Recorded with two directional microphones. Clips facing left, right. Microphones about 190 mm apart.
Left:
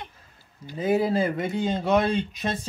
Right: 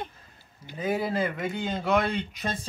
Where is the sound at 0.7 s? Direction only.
30° left (ahead or behind).